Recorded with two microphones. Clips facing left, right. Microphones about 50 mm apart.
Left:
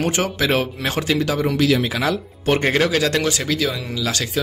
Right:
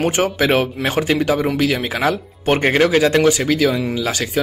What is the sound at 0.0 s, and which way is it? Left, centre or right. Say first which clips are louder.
Speech: right 3 dB; centre.